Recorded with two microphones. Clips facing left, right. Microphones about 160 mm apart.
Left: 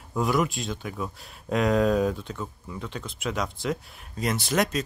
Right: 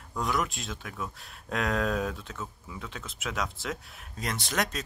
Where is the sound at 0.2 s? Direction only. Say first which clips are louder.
Left 6 dB; centre (ahead or behind).